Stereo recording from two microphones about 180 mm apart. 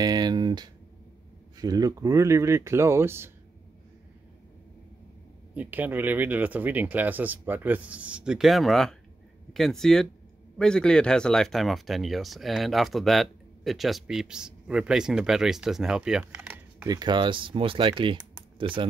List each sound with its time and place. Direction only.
0.0 s speech: 20° right (ahead or behind)
5.5 s speech: 10° right (ahead or behind)
16.8 s speech: 20° right (ahead or behind)